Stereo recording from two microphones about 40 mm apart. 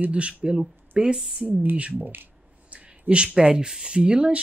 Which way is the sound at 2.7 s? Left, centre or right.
Right.